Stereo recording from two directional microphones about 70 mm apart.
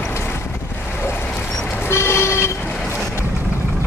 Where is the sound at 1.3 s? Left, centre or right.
Centre.